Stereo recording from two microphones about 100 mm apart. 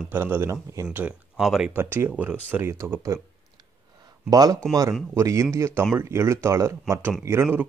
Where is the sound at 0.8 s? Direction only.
10° right (ahead or behind).